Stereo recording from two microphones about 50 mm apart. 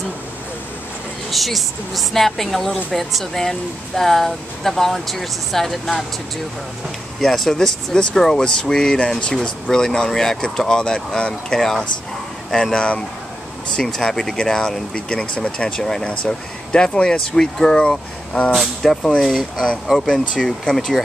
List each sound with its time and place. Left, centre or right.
1.3 s speech: centre
7.2 s speech: centre
18.5 s speech: centre